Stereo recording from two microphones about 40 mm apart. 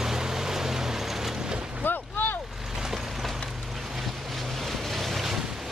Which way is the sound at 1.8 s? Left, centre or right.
Left.